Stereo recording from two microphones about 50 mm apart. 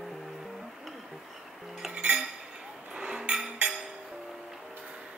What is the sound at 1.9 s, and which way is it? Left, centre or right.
Cutlery, right.